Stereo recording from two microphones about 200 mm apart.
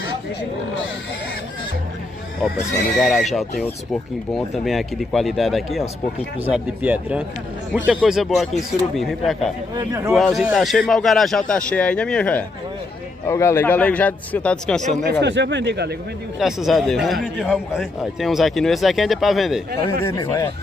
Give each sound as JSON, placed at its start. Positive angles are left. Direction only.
{"t": 3.0, "sound": "a man's voice", "side_deg": 0}
{"t": 14.9, "sound": "speech", "side_deg": -55}
{"t": 16.3, "sound": "a man's voice", "side_deg": 0}
{"t": 20.0, "sound": "a man's voice", "side_deg": 15}